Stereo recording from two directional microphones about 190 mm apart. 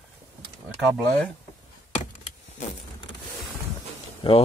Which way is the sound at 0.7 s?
Centre (ahead or behind).